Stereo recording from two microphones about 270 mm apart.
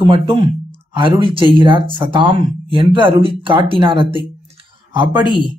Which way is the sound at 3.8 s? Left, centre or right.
Centre.